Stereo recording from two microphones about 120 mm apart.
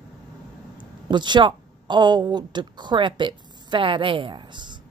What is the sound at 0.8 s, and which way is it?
Speech, 40° right (ahead or behind).